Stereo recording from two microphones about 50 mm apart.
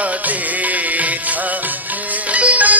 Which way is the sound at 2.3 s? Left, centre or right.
Right.